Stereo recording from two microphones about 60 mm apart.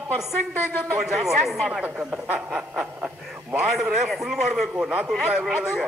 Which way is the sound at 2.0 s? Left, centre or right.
Right.